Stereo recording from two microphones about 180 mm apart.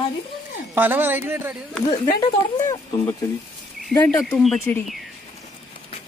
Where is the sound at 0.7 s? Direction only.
10° right (ahead or behind).